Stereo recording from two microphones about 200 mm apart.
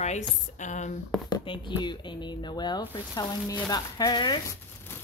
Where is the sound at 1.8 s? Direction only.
20° left (ahead or behind).